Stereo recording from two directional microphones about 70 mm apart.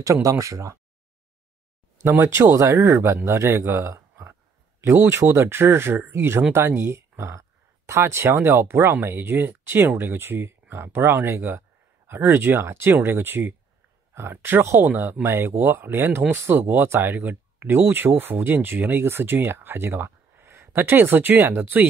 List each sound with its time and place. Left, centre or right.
0.0 s speech: right
2.0 s speech: right
2.8 s speech: right
3.9 s a sound: right
4.8 s speech: right